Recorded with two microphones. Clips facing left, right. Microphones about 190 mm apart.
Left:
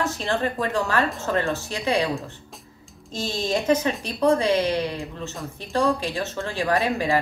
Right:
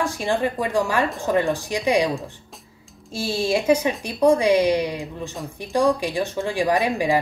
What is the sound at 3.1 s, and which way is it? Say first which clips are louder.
Speech: right 3 dB; 10° right (ahead or behind).